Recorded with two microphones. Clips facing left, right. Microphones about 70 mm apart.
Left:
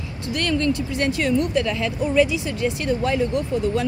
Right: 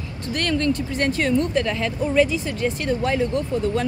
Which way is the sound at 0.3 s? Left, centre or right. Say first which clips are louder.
Even; right.